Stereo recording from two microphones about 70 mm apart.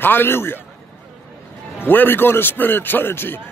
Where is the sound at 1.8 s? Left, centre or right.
Left.